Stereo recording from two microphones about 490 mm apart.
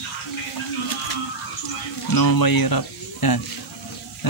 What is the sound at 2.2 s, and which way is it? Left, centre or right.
Speech, left.